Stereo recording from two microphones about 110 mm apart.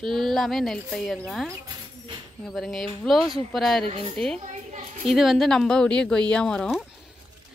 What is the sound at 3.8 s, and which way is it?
Speech, 60° right (ahead or behind).